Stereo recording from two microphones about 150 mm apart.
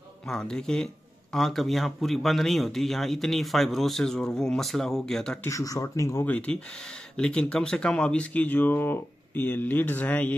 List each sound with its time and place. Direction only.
0.3 s speech: 5° left (ahead or behind)
5.5 s speech: 25° left (ahead or behind)